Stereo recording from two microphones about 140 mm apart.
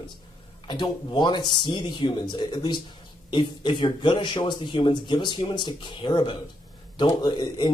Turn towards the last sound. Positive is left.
turn(degrees=35)  # may be behind; listen again after turning